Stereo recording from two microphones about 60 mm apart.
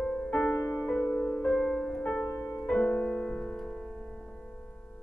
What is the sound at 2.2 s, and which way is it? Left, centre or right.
Music, left.